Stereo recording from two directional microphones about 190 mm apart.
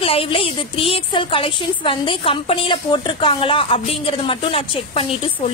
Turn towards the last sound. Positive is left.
turn(degrees=30)  # may be behind; listen again after turning